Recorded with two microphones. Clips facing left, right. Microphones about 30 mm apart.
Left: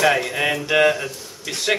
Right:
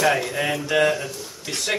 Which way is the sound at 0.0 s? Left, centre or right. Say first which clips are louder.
Left 2 dB; centre.